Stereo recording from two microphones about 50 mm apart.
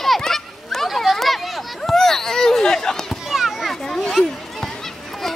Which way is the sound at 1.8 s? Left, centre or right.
Centre.